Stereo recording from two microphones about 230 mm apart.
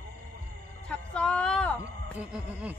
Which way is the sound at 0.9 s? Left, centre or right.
Centre.